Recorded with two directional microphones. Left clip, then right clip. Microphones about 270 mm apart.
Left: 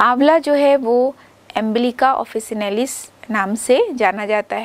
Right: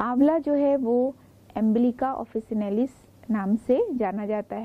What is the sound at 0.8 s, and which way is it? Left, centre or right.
Speech, left.